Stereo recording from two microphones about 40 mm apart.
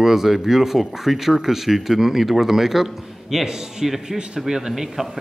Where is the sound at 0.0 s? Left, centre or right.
Centre.